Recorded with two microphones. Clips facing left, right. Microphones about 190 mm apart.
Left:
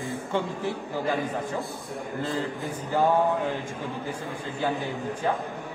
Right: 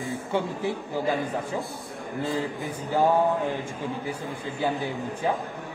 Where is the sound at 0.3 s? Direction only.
10° right (ahead or behind).